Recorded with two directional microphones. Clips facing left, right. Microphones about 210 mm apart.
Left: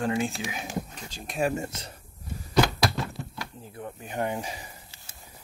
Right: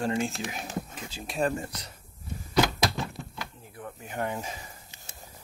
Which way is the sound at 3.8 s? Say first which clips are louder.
Left 2 dB; 20° left (ahead or behind).